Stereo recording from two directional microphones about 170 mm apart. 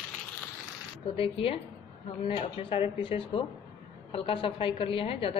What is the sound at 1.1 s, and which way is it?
A woman's voice, 35° left (ahead or behind).